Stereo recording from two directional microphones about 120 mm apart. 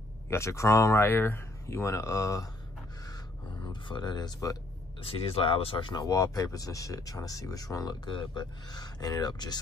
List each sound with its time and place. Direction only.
0.3 s speech: 25° left (ahead or behind)
3.9 s speech: 35° left (ahead or behind)
5.0 s speech: 50° left (ahead or behind); by 9.6 s 35° left (ahead or behind)